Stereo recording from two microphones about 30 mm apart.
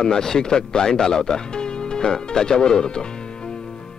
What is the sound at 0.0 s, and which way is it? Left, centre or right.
Speech, centre.